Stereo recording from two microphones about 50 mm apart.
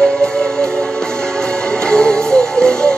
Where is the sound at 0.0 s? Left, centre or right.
Centre.